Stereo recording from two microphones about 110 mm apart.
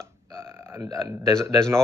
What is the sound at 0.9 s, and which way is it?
Speech, 35° right (ahead or behind).